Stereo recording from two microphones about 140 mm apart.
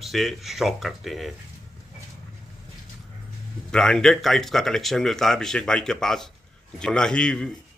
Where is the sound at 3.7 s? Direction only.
5° left (ahead or behind).